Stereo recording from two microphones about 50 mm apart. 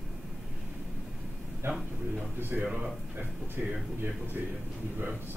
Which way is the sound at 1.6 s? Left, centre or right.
Right.